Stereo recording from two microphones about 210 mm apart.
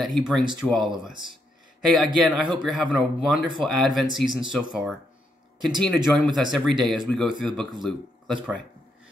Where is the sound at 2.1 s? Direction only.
Centre (ahead or behind).